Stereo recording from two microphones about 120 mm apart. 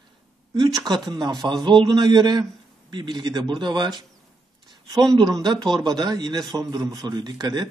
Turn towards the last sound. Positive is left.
turn(degrees=-35)  # may be behind; listen again after turning